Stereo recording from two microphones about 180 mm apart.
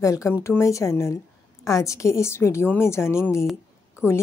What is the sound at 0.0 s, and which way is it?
A woman's voice, 15° left (ahead or behind).